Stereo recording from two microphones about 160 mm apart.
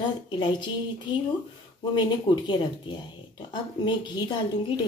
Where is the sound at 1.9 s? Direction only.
30° left (ahead or behind).